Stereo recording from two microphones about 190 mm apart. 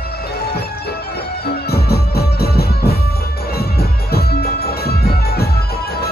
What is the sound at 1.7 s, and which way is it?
Music, 55° left (ahead or behind).